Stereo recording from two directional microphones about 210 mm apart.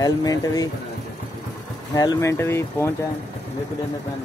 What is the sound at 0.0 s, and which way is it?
Speech, 15° left (ahead or behind).